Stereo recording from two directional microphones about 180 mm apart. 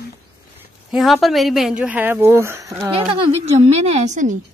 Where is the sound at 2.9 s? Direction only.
30° right (ahead or behind).